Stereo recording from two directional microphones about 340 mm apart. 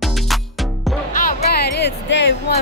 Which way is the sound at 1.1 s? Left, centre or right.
Left.